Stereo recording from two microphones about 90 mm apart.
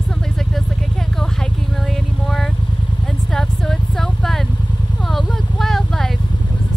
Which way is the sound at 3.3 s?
5° left (ahead or behind).